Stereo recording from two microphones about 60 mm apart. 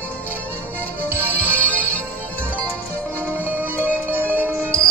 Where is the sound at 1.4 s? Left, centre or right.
Left.